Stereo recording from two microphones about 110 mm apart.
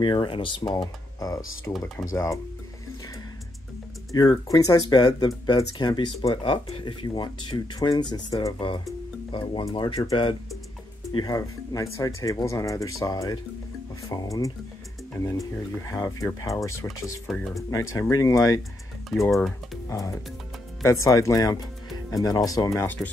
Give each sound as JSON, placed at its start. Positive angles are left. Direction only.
{"t": 0.0, "sound": "speech", "side_deg": 45}
{"t": 0.7, "sound": "speech", "side_deg": 35}
{"t": 4.1, "sound": "speech", "side_deg": 35}
{"t": 9.7, "sound": "speech", "side_deg": 40}
{"t": 15.9, "sound": "speech", "side_deg": 35}
{"t": 19.3, "sound": "speech", "side_deg": 0}
{"t": 19.9, "sound": "speech", "side_deg": 30}